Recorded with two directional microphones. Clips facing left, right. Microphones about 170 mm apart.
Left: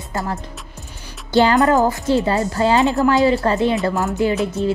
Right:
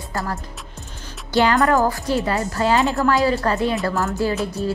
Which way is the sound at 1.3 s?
25° left (ahead or behind).